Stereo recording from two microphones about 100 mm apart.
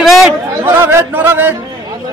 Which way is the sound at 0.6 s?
25° right (ahead or behind).